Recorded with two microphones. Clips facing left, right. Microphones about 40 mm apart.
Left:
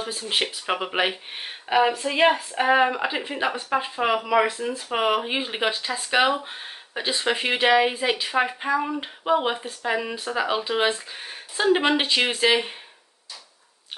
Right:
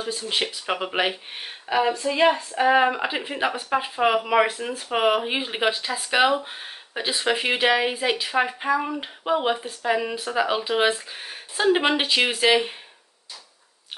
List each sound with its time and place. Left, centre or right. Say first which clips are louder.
0.3 s speech: left 2 dB; centre
1.7 s speech: left 1 dB; centre
2.8 s speech: even; centre
4.9 s speech: right 2 dB; centre